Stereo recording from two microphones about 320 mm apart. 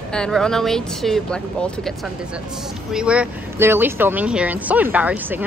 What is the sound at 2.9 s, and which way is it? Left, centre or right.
A woman's voice, centre.